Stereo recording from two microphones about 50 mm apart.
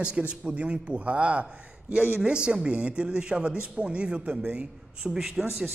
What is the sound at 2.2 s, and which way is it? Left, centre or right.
A man's voice, centre.